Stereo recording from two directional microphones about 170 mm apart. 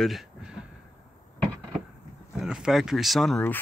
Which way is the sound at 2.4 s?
Centre (ahead or behind).